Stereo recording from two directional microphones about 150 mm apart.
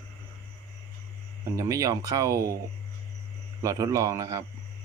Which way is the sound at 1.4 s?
20° right (ahead or behind).